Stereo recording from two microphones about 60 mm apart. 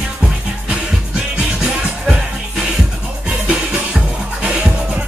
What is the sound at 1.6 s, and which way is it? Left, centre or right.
Music, centre.